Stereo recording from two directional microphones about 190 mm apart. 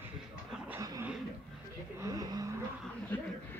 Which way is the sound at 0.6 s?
15° right (ahead or behind).